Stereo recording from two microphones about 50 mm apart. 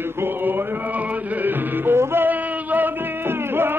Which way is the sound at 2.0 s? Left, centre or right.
Right.